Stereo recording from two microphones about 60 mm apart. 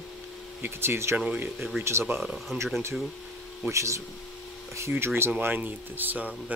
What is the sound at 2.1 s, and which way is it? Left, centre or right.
Speech, right.